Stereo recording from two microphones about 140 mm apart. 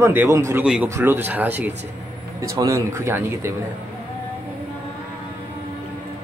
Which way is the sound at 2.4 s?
25° right (ahead or behind).